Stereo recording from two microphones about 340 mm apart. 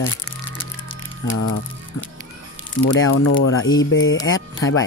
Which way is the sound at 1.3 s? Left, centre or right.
Left.